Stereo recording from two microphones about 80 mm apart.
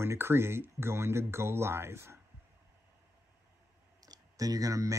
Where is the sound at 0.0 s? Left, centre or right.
Right.